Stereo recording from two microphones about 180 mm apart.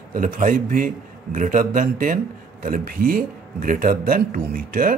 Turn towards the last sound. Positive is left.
turn(degrees=-55)  # may be behind; listen again after turning